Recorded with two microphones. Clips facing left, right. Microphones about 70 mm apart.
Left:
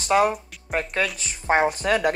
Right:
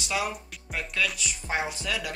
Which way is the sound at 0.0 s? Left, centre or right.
Left.